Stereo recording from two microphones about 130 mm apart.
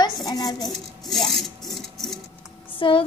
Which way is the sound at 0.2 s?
30° left (ahead or behind).